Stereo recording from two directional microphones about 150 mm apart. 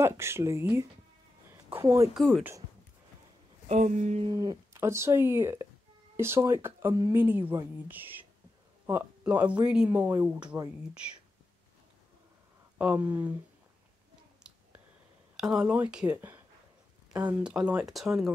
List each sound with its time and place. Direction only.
0.0 s speech: 15° right (ahead or behind)
2.1 s speech: centre (ahead or behind)
3.6 s a sound: 50° right (ahead or behind)
4.3 s speech: 25° right (ahead or behind)
9.2 s speech: 10° right (ahead or behind)
12.7 s speech: 10° right (ahead or behind)
15.3 s speech: centre (ahead or behind)
17.4 s speech: 5° right (ahead or behind)